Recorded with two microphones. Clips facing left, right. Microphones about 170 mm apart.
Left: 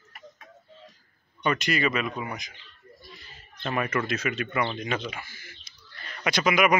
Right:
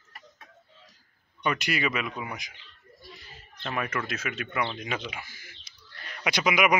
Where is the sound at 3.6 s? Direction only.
Centre (ahead or behind).